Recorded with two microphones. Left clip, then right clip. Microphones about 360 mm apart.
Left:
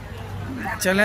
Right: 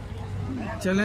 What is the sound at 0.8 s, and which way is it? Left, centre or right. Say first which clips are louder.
Speech: left 6 dB; centre.